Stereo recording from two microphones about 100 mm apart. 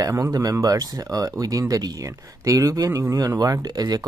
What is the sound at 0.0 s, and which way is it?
Speech, 35° right (ahead or behind).